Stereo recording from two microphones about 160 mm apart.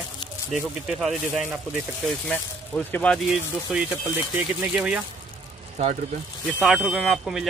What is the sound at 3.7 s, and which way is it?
Speech, 10° right (ahead or behind).